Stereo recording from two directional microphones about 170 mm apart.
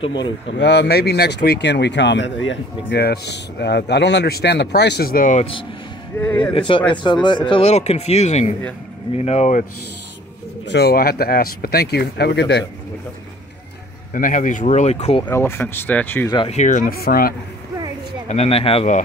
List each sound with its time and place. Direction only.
0.0 s speech: 25° left (ahead or behind)
0.6 s speech: 85° left; by 5.5 s 50° left (ahead or behind)
6.1 s speech: 10° left (ahead or behind)
6.5 s speech: 30° left (ahead or behind); by 9.7 s 45° left (ahead or behind)
10.6 s speech: 80° left
14.1 s speech: 50° left (ahead or behind)
15.2 s speech: 15° left (ahead or behind)
16.4 s speech: 45° left (ahead or behind); by 17.3 s 60° left (ahead or behind)
18.3 s speech: 35° left (ahead or behind)